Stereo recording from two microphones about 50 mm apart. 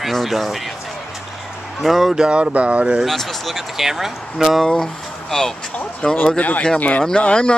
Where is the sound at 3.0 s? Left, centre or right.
Centre.